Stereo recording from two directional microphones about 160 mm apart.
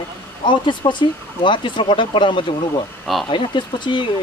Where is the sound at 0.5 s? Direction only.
30° left (ahead or behind).